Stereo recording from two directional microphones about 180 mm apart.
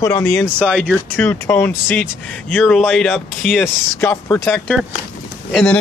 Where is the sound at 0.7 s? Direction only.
5° right (ahead or behind).